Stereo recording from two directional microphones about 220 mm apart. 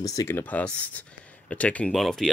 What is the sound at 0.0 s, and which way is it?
Speech, 15° left (ahead or behind).